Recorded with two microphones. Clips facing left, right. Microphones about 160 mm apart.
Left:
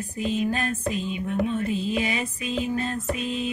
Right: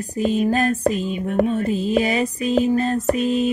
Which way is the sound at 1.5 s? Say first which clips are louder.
Right 6 dB; 40° right (ahead or behind).